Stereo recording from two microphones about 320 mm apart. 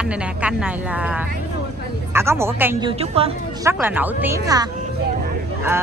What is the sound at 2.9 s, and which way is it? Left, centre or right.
Speech, centre.